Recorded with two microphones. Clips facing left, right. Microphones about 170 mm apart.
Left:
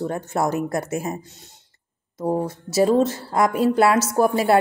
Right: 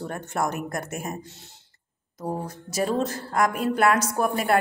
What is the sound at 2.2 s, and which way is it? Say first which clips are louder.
A woman's voice: left 8 dB; 30° left (ahead or behind).